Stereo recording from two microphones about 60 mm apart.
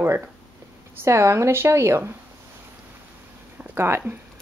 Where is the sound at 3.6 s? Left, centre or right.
Right.